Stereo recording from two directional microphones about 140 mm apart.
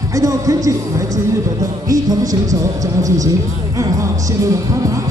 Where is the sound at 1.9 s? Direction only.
25° right (ahead or behind).